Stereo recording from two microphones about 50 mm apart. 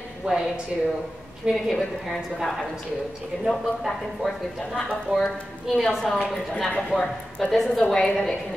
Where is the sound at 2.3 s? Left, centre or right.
Centre.